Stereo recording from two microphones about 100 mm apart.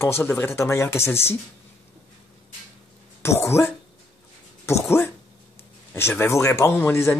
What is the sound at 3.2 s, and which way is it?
Speech, 25° left (ahead or behind).